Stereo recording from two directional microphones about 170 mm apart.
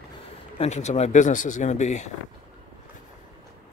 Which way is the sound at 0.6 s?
40° left (ahead or behind).